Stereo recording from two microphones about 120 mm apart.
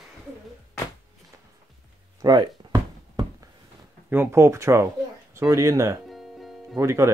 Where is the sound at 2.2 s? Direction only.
35° right (ahead or behind).